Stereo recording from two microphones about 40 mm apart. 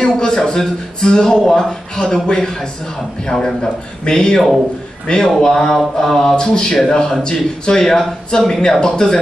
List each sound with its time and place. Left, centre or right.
0.0 s speech: left
5.4 s speech: centre